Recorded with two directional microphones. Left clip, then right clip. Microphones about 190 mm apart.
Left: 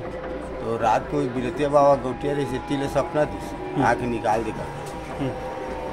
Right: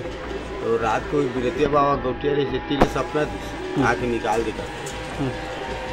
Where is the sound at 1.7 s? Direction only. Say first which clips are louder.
Left 6 dB; 15° left (ahead or behind).